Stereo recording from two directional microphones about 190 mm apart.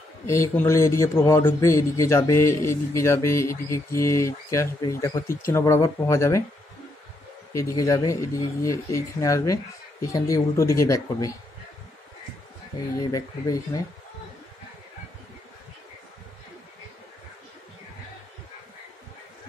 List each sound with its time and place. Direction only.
0.3 s a man's voice: 15° left (ahead or behind)
7.5 s a man's voice: 15° left (ahead or behind)
13.0 s speech: 20° left (ahead or behind)